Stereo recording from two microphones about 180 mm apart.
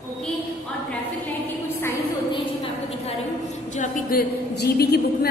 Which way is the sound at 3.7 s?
45° left (ahead or behind).